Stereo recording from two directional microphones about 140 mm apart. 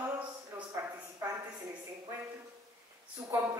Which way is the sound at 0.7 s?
20° right (ahead or behind).